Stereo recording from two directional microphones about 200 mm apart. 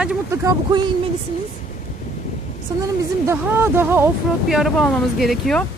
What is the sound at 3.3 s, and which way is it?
Speech, 10° right (ahead or behind).